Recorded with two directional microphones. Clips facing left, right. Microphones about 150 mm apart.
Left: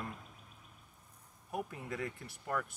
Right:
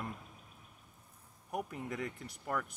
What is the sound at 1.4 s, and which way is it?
Speech, 20° right (ahead or behind).